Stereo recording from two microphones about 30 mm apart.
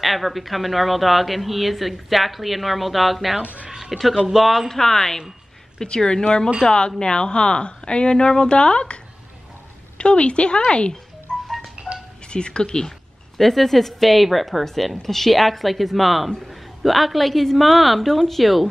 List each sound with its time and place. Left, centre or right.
0.0 s speech: centre
4.6 s speech: centre
5.8 s a woman's voice: left
11.4 s music: centre
12.3 s a woman's voice: left
13.4 s speech: centre
14.6 s speech: centre